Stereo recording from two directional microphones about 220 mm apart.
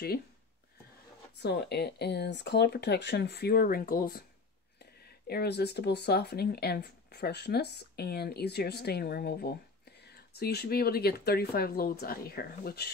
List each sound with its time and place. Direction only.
1.4 s speech: 50° left (ahead or behind)
5.2 s speech: 45° left (ahead or behind)